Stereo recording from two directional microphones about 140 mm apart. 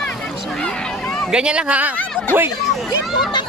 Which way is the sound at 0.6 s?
5° left (ahead or behind).